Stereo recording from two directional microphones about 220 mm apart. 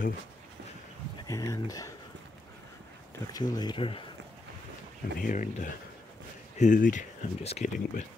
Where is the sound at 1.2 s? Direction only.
15° left (ahead or behind).